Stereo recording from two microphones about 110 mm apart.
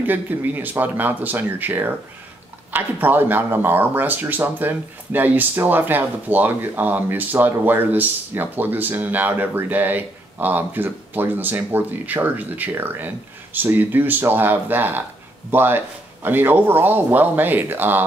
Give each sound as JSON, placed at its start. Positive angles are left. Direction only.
{"t": 0.0, "sound": "speech", "side_deg": -15}